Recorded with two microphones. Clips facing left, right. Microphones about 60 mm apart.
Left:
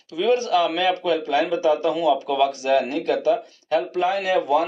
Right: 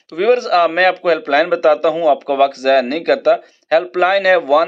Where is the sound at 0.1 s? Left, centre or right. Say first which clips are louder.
Right 6 dB; right.